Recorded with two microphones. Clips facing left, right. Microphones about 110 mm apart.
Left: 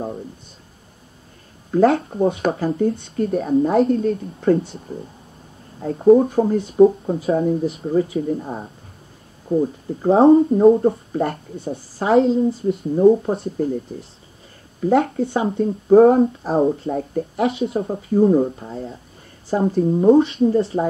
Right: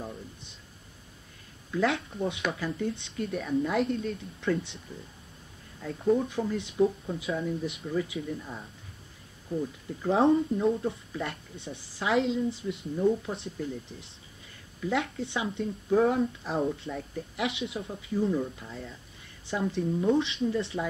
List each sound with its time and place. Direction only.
1.7 s speech: 40° left (ahead or behind)
6.2 s speech: 45° left (ahead or behind)
10.5 s speech: 55° left (ahead or behind); by 20.8 s 35° left (ahead or behind)